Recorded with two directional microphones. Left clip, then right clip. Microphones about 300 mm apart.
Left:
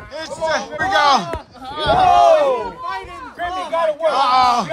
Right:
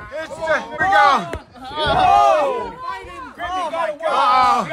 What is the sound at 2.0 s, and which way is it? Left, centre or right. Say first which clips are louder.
Crowd: left 1 dB; left.